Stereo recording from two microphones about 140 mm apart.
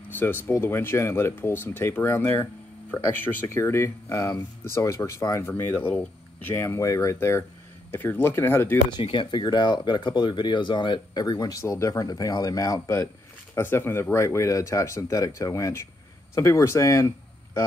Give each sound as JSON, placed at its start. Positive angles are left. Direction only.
{"t": 0.1, "sound": "a sound", "side_deg": 15}
{"t": 0.5, "sound": "speech", "side_deg": 15}
{"t": 9.0, "sound": "speech", "side_deg": 35}